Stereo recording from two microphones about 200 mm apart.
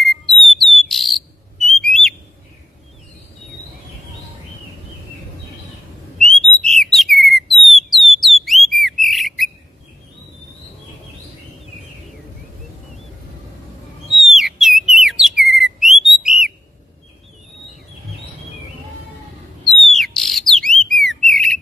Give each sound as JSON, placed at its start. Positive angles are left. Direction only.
{"t": 0.3, "sound": "bird", "side_deg": 0}
{"t": 6.1, "sound": "bird", "side_deg": 5}
{"t": 14.2, "sound": "whistle", "side_deg": 0}
{"t": 19.6, "sound": "bird", "side_deg": 0}